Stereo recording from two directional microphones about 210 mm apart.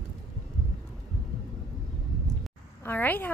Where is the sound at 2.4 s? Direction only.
10° left (ahead or behind).